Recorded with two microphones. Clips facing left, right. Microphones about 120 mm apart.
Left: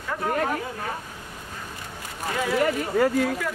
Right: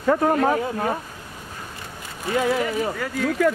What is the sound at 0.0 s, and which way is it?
Speech, 60° right (ahead or behind).